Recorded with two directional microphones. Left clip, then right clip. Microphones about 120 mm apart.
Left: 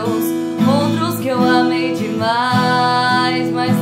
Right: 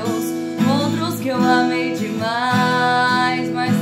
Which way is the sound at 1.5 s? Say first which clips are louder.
Left 1 dB; 20° left (ahead or behind).